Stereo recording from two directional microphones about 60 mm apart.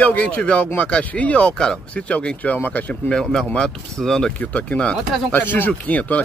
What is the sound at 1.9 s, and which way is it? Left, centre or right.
Speech, left.